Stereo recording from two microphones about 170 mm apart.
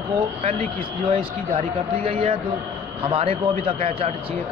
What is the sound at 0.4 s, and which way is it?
A man's voice, 35° right (ahead or behind).